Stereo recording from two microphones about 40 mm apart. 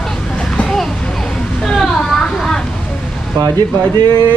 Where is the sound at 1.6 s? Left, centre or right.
Centre.